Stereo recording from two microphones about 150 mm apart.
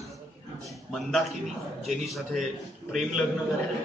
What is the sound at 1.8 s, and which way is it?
A man's voice, centre (ahead or behind).